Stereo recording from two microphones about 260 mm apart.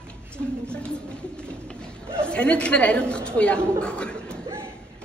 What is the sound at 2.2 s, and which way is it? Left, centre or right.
A woman's voice, centre.